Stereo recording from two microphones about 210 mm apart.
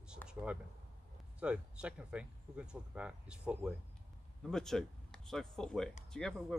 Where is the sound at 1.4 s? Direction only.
5° right (ahead or behind).